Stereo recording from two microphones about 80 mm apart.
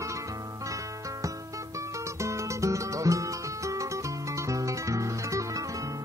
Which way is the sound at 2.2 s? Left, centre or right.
Right.